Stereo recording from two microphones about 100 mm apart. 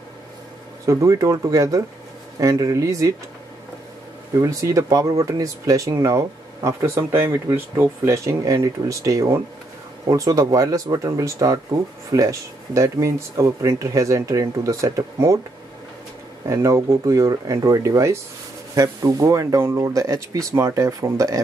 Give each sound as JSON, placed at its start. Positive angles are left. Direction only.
{"t": 0.8, "sound": "speech", "side_deg": -35}
{"t": 4.4, "sound": "speech", "side_deg": -35}
{"t": 16.4, "sound": "speech", "side_deg": -30}